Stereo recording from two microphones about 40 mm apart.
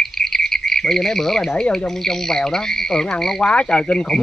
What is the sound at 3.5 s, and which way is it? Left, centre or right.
Speech, left.